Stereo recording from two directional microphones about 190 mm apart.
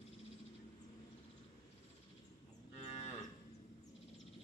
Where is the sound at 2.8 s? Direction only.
35° left (ahead or behind).